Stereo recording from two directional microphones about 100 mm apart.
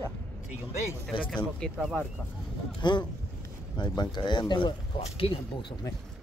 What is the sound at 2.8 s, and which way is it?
Speech, 50° left (ahead or behind).